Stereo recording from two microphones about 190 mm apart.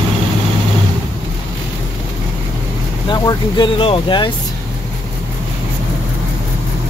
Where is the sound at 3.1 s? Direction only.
25° left (ahead or behind).